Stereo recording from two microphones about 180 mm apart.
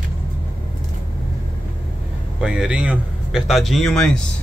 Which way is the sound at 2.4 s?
5° right (ahead or behind).